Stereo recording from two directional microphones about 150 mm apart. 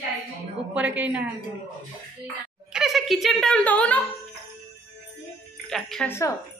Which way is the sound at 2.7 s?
Centre (ahead or behind).